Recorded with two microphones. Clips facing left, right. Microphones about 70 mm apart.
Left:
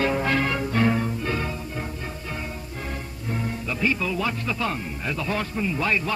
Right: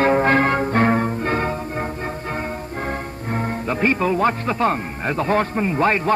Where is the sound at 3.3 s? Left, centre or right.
Right.